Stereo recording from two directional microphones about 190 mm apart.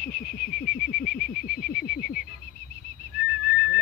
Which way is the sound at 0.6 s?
50° left (ahead or behind).